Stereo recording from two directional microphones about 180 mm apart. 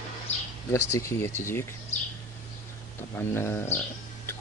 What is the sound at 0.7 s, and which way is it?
Speech, 15° left (ahead or behind).